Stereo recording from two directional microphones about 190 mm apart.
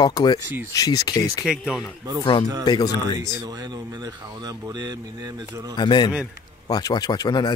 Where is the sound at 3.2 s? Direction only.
20° right (ahead or behind).